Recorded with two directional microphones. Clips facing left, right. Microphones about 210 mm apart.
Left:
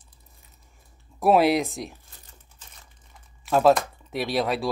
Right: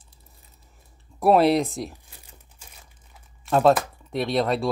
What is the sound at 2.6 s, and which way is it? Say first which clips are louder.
Crumpling: right 2 dB; 10° right (ahead or behind).